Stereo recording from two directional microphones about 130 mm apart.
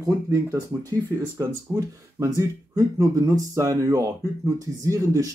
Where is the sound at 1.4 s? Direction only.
25° right (ahead or behind).